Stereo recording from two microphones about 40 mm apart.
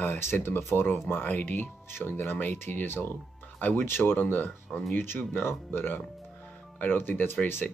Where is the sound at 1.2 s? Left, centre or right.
Left.